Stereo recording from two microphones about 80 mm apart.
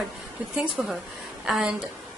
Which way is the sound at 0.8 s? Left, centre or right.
Centre.